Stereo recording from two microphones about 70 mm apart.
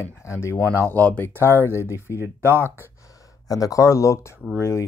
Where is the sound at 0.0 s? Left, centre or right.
Left.